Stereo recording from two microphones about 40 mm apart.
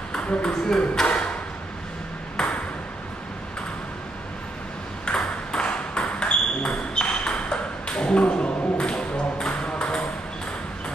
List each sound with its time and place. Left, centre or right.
0.1 s speech: left
1.0 s a sound: left
2.3 s ping: left
5.0 s ping: left